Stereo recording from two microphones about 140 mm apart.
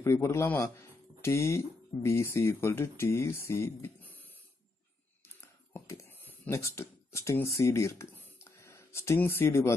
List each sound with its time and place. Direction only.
0.0 s speech: 20° left (ahead or behind)
5.4 s speech: 20° left (ahead or behind)